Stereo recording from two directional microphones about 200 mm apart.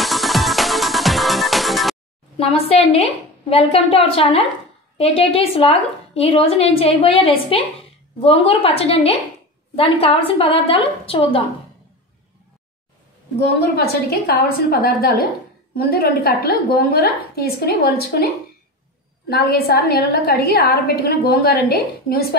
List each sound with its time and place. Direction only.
0.0 s music: centre (ahead or behind)
2.3 s a woman's voice: 30° left (ahead or behind)
13.6 s a woman's voice: 50° left (ahead or behind)